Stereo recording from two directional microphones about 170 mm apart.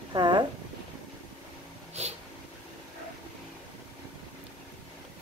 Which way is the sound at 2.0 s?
40° right (ahead or behind).